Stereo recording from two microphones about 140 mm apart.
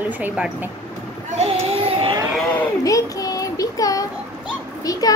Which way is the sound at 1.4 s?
45° right (ahead or behind).